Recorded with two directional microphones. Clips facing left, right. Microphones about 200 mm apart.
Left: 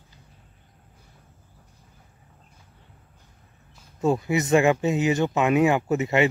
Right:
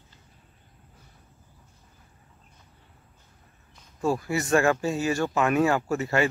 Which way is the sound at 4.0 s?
20° left (ahead or behind).